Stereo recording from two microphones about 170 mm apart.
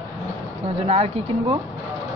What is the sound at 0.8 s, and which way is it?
Speech, 35° right (ahead or behind).